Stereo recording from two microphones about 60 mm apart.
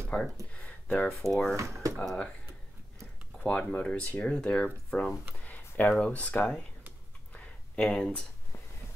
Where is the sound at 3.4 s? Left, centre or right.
Left.